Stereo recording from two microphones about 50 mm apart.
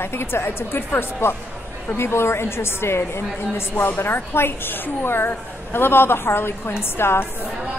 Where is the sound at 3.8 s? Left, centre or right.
Left.